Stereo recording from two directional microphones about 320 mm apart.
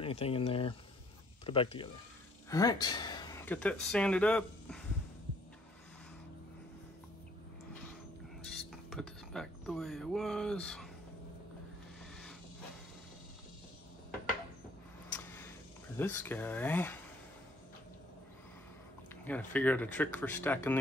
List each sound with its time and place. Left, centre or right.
0.0 s speech: centre
8.9 s speech: centre
15.1 s a sound: centre
16.0 s speech: centre
19.2 s speech: centre